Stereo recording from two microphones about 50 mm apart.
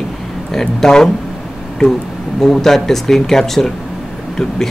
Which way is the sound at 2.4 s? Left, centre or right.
Centre.